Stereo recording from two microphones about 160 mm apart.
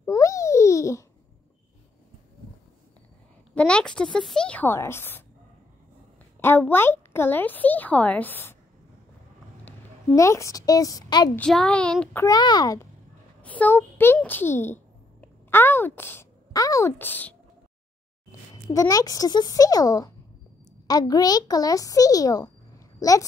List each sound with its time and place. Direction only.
0.0 s babbling: 20° left (ahead or behind)
3.5 s speech: 5° left (ahead or behind)
6.4 s speech: 10° left (ahead or behind)
9.7 s a woman's voice: 20° left (ahead or behind)
11.3 s a child's voice: 5° left (ahead or behind)
12.3 s a child's voice: 25° left (ahead or behind)
13.4 s a child's voice: 10° left (ahead or behind)
18.7 s a child's voice: 20° left (ahead or behind)